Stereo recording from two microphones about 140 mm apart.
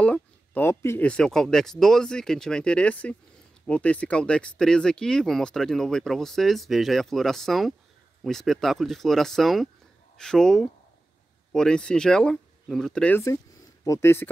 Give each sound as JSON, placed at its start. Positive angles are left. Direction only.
{"t": 0.0, "sound": "speech", "side_deg": 10}
{"t": 13.8, "sound": "speech", "side_deg": 20}